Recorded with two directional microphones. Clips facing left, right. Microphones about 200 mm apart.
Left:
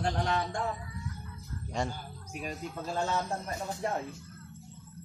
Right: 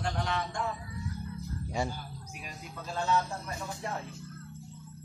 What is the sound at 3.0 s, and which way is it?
Speech, 45° left (ahead or behind).